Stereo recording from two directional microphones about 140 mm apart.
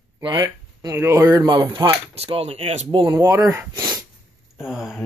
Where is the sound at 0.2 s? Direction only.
30° right (ahead or behind).